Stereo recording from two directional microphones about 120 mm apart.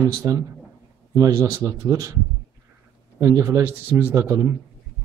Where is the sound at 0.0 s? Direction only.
30° right (ahead or behind).